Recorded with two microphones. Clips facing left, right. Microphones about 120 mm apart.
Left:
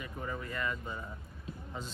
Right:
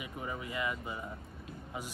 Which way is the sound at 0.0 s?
15° right (ahead or behind).